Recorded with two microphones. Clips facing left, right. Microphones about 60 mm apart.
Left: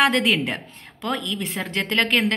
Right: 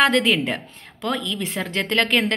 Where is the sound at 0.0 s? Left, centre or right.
Centre.